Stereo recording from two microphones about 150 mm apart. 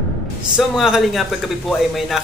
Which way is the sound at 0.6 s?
5° right (ahead or behind).